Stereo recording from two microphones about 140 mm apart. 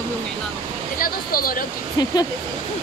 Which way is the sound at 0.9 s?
90° left.